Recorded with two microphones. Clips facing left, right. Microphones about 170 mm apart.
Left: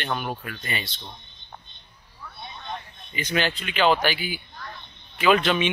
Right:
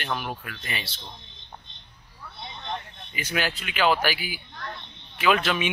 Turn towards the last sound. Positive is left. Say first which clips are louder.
# left 3 dB
turn(degrees=-5)  # may be behind; listen again after turning